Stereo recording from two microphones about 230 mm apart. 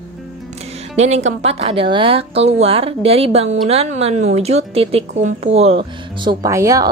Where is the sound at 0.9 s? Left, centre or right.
Right.